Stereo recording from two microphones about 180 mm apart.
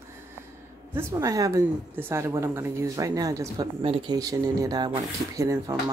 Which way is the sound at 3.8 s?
30° right (ahead or behind).